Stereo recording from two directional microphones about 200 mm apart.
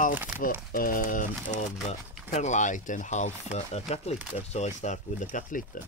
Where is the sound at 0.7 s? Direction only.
45° left (ahead or behind).